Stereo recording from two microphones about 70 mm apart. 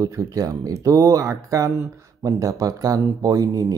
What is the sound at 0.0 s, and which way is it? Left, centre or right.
Speech, right.